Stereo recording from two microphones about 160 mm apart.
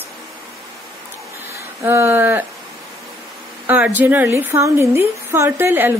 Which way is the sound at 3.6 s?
10° right (ahead or behind).